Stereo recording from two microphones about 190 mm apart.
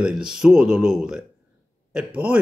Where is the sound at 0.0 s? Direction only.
5° right (ahead or behind).